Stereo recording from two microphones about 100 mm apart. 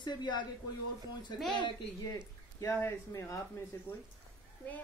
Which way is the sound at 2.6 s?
30° left (ahead or behind).